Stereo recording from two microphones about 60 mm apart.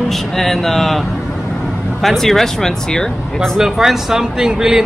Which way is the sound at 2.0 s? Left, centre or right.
Centre.